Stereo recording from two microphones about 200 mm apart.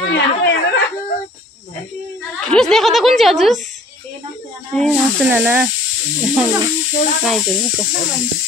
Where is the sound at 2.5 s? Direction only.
5° left (ahead or behind).